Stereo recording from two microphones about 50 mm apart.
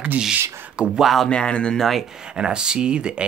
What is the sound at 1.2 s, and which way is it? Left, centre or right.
Speech, centre.